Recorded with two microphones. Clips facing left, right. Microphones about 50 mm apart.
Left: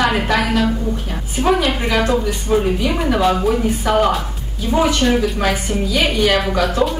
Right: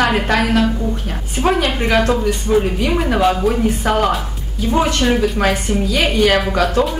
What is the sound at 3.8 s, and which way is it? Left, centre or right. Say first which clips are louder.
Speech: left 2 dB; right.